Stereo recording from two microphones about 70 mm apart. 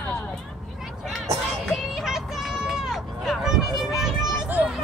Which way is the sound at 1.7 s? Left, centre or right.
Centre.